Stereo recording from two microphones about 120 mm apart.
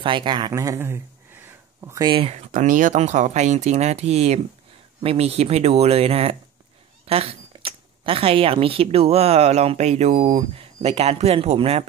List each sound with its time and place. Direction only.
0.0 s speech: 45° right (ahead or behind)
0.5 s a sound: 25° right (ahead or behind)
2.0 s speech: 45° right (ahead or behind)
2.3 s speech: 75° right (ahead or behind); by 11.9 s 60° right (ahead or behind)